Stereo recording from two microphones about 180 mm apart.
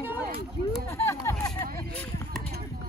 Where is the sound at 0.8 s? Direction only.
15° left (ahead or behind).